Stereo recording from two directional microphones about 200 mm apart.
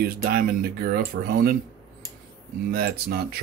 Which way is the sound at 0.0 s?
45° right (ahead or behind).